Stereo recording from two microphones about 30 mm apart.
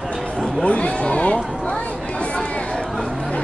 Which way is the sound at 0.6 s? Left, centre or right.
Left.